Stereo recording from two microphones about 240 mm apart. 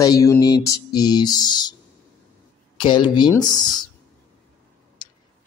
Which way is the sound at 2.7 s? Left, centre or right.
Centre.